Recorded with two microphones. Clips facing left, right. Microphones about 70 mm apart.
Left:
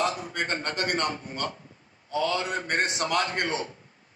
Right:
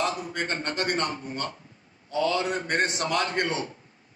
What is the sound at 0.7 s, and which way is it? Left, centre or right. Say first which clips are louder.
Speech: right 1 dB; left.